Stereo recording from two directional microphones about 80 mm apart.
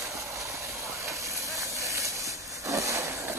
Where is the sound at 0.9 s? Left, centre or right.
Right.